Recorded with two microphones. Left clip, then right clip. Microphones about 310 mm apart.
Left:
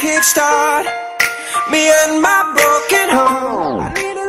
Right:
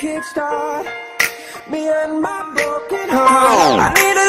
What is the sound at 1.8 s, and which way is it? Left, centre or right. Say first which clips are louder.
Music: left 5 dB; left.